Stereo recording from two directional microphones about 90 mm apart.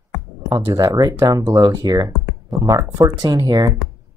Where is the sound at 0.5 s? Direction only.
40° right (ahead or behind).